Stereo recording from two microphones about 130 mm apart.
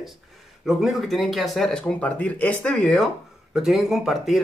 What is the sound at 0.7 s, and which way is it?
Speech, centre (ahead or behind).